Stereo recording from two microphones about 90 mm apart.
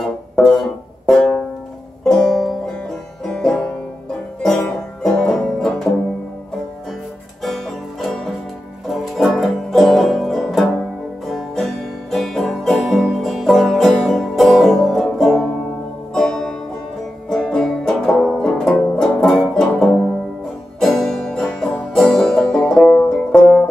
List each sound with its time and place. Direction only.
0.0 s music: 5° left (ahead or behind)
2.0 s banjo: 5° left (ahead or behind)
7.4 s music: centre (ahead or behind)
18.9 s banjo: 10° left (ahead or behind)
19.3 s music: 5° left (ahead or behind)